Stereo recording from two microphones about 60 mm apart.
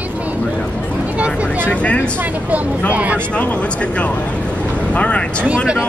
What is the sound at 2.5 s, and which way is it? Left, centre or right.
Speech, right.